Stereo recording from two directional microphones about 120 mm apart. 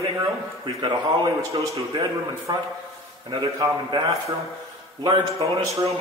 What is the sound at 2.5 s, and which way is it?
Speech, 35° right (ahead or behind).